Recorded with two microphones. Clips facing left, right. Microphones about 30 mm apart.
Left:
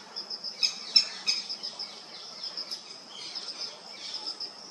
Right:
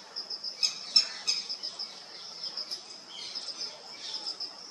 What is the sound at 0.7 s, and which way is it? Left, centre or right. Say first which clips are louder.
Squawk: left 2 dB; centre.